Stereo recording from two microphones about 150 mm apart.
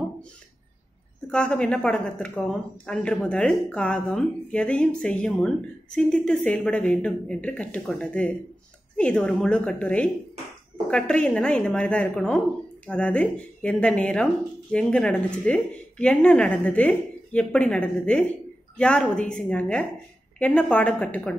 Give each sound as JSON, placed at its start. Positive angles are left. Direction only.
{"t": 1.3, "sound": "speech", "side_deg": 5}